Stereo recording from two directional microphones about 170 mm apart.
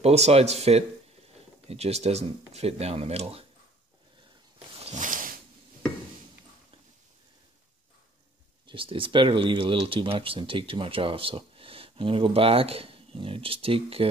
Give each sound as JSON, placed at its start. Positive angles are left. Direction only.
{"t": 0.0, "sound": "speech", "side_deg": -40}
{"t": 4.7, "sound": "a sound", "side_deg": -40}
{"t": 8.6, "sound": "speech", "side_deg": -30}